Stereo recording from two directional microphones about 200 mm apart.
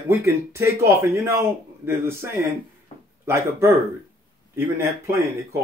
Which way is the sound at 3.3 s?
15° right (ahead or behind).